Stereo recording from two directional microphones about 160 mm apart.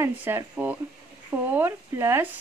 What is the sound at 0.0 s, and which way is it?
A woman's voice, 15° right (ahead or behind).